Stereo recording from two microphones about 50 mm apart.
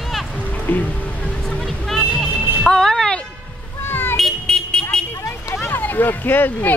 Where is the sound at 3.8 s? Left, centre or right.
Left.